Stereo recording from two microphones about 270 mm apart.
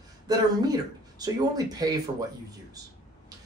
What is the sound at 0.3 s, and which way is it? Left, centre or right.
Speech, centre.